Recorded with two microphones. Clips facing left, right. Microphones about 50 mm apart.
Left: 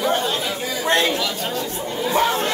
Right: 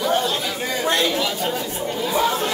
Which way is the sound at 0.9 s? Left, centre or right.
Left.